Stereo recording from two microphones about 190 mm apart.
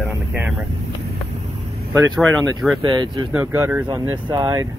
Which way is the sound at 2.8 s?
25° right (ahead or behind).